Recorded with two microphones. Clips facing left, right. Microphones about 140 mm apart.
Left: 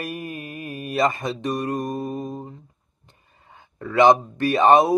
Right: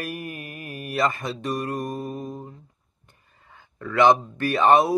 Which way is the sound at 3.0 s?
20° left (ahead or behind).